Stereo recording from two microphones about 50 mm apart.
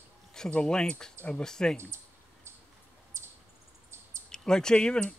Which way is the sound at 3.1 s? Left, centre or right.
Right.